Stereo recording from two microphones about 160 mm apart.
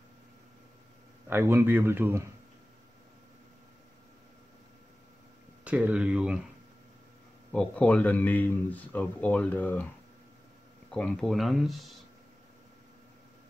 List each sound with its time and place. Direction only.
1.3 s speech: 15° right (ahead or behind)
5.6 s speech: 10° right (ahead or behind)
7.5 s speech: 5° left (ahead or behind)
10.9 s speech: 5° left (ahead or behind)